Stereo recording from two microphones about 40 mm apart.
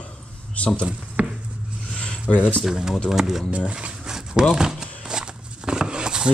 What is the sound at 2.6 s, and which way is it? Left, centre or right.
Speech, centre.